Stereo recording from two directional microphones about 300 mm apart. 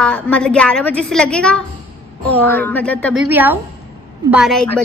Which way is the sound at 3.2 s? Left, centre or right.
Centre.